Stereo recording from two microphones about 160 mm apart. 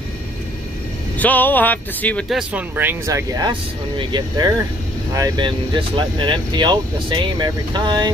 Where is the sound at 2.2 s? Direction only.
Centre (ahead or behind).